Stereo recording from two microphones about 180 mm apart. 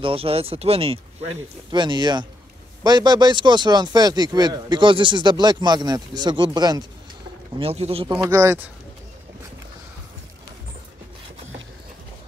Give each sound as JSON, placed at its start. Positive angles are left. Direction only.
{"t": 0.0, "sound": "speech", "side_deg": -30}
{"t": 7.5, "sound": "speech", "side_deg": -35}
{"t": 8.3, "sound": "speech", "side_deg": -15}